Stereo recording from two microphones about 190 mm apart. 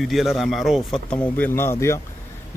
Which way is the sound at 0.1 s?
Centre (ahead or behind).